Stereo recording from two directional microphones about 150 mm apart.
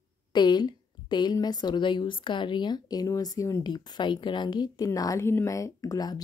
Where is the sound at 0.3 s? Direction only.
30° left (ahead or behind).